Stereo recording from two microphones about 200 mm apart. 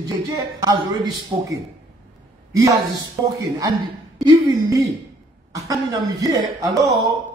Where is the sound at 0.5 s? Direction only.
20° right (ahead or behind).